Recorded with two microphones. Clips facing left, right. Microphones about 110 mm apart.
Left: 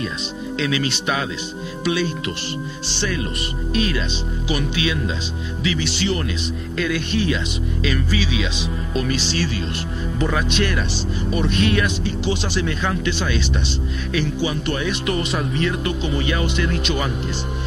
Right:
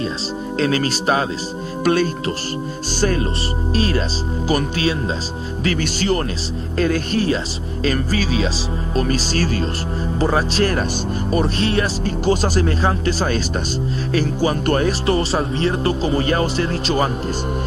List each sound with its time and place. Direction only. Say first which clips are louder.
0.6 s speech: right 4 dB; 40° right (ahead or behind)